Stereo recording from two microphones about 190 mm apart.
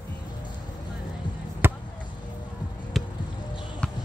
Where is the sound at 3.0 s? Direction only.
Centre (ahead or behind).